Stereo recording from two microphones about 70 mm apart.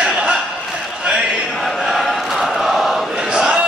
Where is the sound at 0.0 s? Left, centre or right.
Centre.